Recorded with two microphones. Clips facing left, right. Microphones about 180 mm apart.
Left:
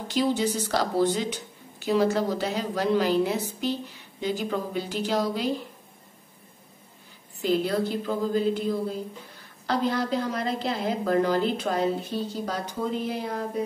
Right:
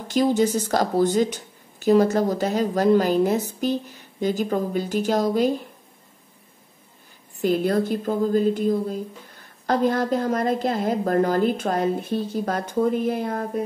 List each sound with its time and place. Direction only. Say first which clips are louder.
0.1 s a woman's voice: right 5 dB; 45° right (ahead or behind)
7.4 s a woman's voice: right 4 dB; 50° right (ahead or behind)